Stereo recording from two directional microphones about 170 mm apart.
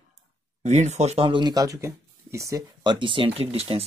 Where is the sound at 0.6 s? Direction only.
40° right (ahead or behind).